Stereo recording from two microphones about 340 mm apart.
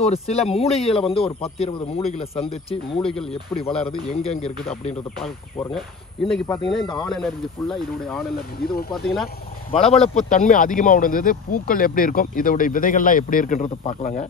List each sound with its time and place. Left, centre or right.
0.0 s a man's voice: centre
3.0 s speech: centre
4.1 s a man's voice: centre
8.5 s speech: left
8.9 s speech: centre
9.7 s speech: centre